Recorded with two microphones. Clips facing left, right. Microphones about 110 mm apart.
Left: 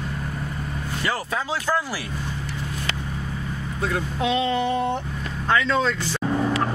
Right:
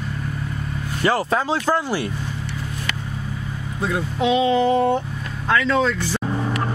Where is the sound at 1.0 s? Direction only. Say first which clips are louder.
Right 8 dB; 35° right (ahead or behind).